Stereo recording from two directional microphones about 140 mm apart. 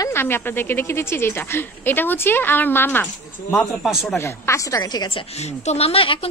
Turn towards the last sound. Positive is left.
turn(degrees=40)  # may be behind; listen again after turning